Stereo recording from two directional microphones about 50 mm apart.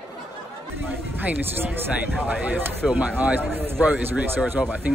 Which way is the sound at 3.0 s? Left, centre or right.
Right.